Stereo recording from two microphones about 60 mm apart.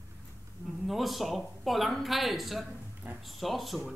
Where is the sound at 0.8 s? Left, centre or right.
Centre.